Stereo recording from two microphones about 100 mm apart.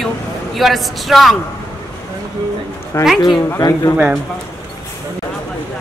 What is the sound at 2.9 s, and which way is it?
Speech, 30° left (ahead or behind).